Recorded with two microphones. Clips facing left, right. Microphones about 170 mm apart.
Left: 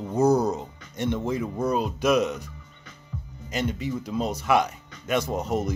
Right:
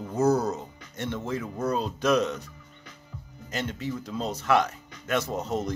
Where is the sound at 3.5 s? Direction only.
15° left (ahead or behind).